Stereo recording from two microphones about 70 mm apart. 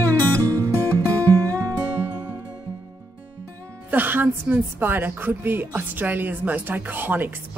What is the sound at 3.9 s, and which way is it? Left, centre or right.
A woman's voice, right.